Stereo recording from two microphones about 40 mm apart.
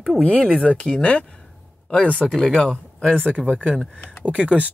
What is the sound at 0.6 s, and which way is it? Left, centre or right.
Speech, left.